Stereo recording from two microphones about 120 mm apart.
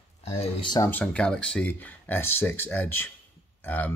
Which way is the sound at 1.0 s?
10° left (ahead or behind).